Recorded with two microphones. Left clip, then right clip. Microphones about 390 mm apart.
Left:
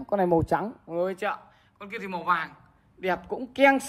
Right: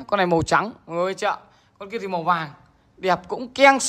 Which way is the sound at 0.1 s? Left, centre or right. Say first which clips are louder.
Right 4 dB; left.